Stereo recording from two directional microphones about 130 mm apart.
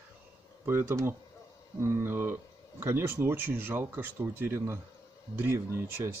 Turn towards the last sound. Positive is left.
turn(degrees=-20)  # may be behind; listen again after turning